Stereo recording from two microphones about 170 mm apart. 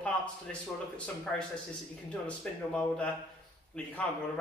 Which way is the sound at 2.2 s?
5° left (ahead or behind).